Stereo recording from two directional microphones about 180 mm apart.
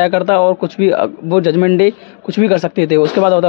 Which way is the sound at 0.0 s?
20° left (ahead or behind).